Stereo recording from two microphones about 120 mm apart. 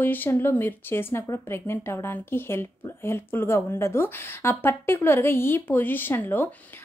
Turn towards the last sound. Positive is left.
turn(degrees=15)  # may be behind; listen again after turning